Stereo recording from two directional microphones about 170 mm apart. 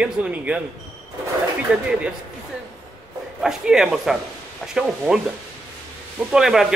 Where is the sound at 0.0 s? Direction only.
5° right (ahead or behind).